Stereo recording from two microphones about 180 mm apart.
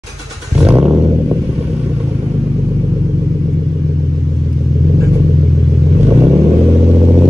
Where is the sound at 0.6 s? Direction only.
5° right (ahead or behind).